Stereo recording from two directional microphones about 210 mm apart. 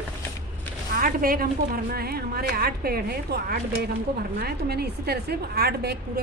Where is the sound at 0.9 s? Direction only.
45° right (ahead or behind).